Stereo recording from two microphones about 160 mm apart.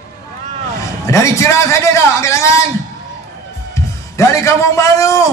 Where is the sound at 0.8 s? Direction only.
20° left (ahead or behind).